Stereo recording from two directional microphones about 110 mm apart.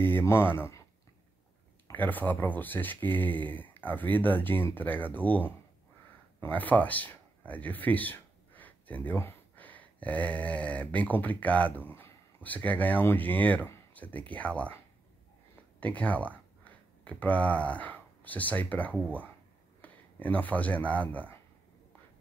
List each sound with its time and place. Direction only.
0.0 s speech: 20° left (ahead or behind)
1.9 s speech: 15° left (ahead or behind)
15.8 s speech: 15° left (ahead or behind)